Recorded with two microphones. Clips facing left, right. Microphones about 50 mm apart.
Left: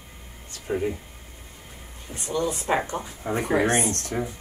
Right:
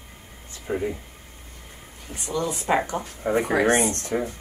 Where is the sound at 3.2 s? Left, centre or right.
Right.